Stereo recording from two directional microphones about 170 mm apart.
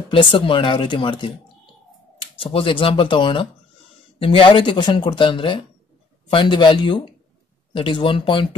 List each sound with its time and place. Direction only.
0.1 s speech: 30° left (ahead or behind)